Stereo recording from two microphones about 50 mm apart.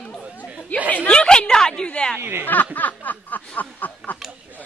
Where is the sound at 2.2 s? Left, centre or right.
Right.